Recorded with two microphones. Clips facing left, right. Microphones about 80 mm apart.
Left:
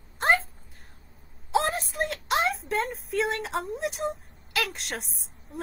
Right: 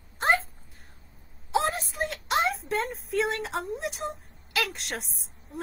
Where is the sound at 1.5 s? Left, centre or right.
Centre.